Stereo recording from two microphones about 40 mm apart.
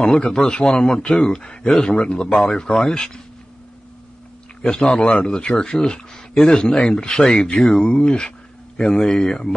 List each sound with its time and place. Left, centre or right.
0.0 s a man's voice: centre
4.6 s a man's voice: left